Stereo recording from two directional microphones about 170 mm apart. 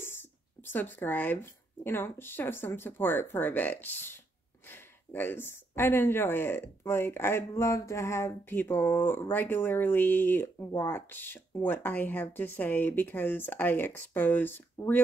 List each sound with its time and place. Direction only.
0.0 s speech: 10° left (ahead or behind)